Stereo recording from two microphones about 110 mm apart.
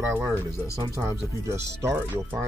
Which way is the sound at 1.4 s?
25° right (ahead or behind).